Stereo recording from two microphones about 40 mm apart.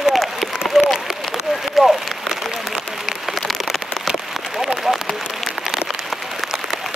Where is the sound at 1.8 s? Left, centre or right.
Centre.